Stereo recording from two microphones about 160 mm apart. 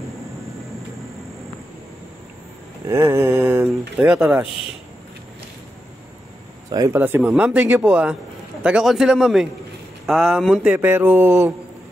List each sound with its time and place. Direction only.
2.9 s a man's voice: 20° right (ahead or behind)
6.7 s speech: 25° right (ahead or behind)
7.0 s a man's voice: 15° right (ahead or behind)